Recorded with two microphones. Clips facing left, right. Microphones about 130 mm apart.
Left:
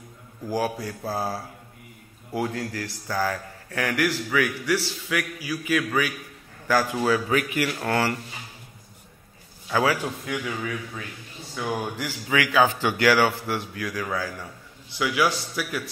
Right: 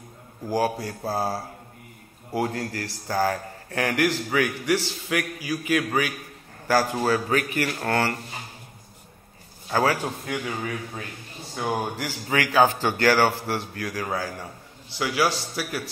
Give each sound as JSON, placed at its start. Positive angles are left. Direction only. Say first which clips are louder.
{"t": 0.5, "sound": "a man's voice", "louder": "right 2 dB", "side_deg": -45}
{"t": 9.7, "sound": "a man's voice", "louder": "even", "side_deg": -35}